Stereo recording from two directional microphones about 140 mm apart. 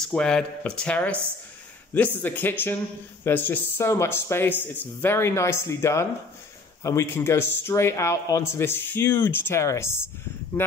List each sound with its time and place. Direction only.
0.0 s a man's voice: 5° left (ahead or behind)